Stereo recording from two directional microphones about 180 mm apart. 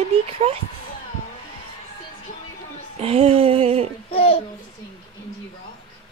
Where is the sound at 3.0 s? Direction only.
35° right (ahead or behind).